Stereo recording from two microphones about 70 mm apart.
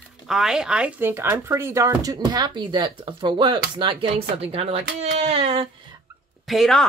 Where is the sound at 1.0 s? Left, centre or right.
Right.